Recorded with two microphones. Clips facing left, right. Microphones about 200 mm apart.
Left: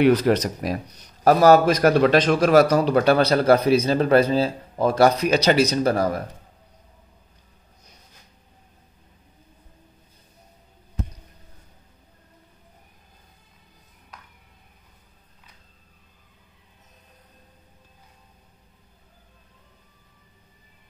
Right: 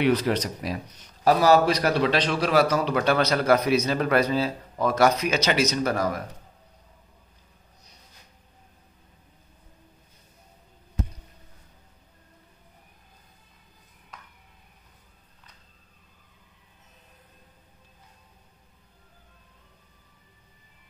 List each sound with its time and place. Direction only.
0.0 s a man's voice: 45° left (ahead or behind); by 6.2 s 30° left (ahead or behind)